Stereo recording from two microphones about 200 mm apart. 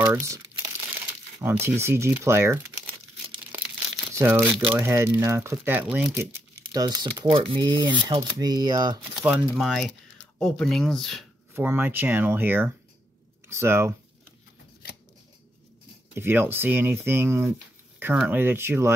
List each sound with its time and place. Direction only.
0.0 s crumpling: 15° right (ahead or behind)
1.4 s speech: 10° right (ahead or behind)
4.1 s speech: 10° right (ahead or behind)
9.2 s speech: 5° right (ahead or behind)
11.5 s speech: 10° right (ahead or behind)
16.2 s speech: 10° right (ahead or behind)